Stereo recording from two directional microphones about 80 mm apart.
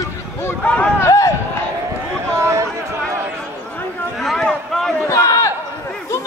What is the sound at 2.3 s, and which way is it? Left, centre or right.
Chatter, right.